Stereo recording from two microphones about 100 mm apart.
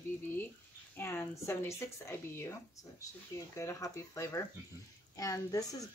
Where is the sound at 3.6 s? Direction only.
30° left (ahead or behind).